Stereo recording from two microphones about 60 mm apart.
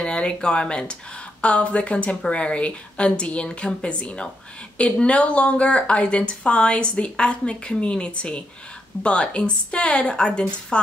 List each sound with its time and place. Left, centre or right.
0.0 s a woman's voice: centre